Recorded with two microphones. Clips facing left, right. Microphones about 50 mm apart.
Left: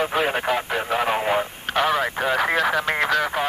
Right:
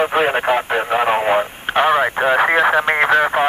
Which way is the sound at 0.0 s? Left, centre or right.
Right.